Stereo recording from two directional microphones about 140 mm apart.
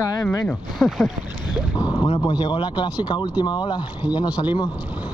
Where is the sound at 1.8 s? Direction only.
25° left (ahead or behind).